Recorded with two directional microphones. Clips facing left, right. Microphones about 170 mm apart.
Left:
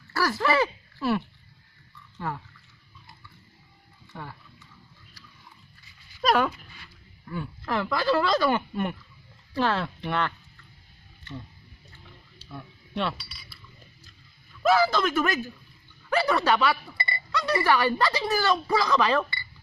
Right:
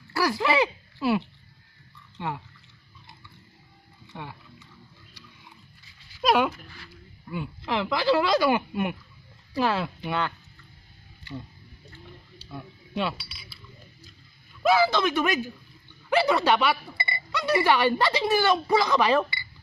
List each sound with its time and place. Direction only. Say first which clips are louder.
0.2 s speech: right 1 dB; 15° right (ahead or behind)
4.1 s speech: right 1 dB; 5° right (ahead or behind)
6.2 s speech: right 1 dB; 5° right (ahead or behind)
12.4 s a sound: right 2 dB; 5° right (ahead or behind)
14.6 s speech: even; 10° right (ahead or behind)
16.4 s speech: right 1 dB; 5° right (ahead or behind)
16.9 s a sound: even; 20° right (ahead or behind)
17.3 s chink: right 1 dB; 5° right (ahead or behind)
17.6 s speech: right 1 dB; 20° right (ahead or behind)